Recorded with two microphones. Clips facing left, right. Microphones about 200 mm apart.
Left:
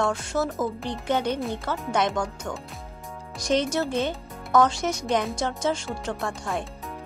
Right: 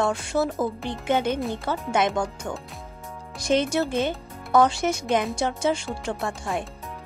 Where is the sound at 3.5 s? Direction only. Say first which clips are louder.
Right 2 dB; 15° right (ahead or behind).